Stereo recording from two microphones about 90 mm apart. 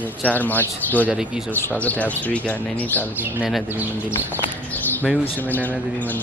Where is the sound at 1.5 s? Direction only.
20° left (ahead or behind).